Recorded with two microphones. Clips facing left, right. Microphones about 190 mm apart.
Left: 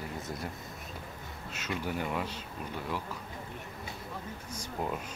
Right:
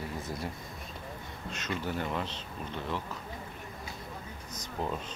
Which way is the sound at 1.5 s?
10° left (ahead or behind).